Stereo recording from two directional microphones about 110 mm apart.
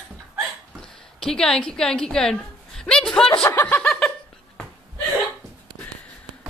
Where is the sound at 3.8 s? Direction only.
5° left (ahead or behind).